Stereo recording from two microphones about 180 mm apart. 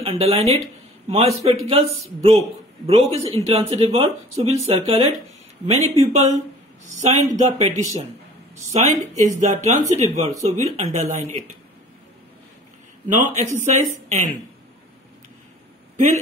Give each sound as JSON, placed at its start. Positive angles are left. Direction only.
{"t": 0.0, "sound": "speech", "side_deg": -35}
{"t": 8.7, "sound": "a woman's voice", "side_deg": -40}
{"t": 13.1, "sound": "speech", "side_deg": -40}